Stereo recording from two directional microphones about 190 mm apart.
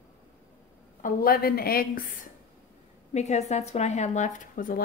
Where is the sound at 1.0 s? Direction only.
50° left (ahead or behind).